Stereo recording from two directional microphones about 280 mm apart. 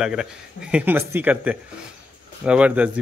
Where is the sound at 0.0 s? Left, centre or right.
Centre.